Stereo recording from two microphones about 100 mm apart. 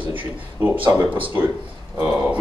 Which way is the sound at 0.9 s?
20° right (ahead or behind).